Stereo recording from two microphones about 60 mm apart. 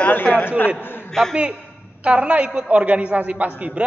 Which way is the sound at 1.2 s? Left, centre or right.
Centre.